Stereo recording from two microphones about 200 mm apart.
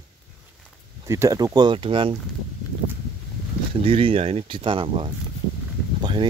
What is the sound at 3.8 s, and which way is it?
Speech, 30° right (ahead or behind).